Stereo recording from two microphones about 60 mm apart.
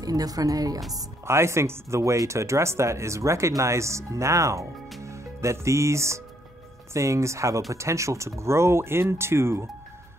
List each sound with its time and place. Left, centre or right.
0.0 s speech: right
1.2 s speech: right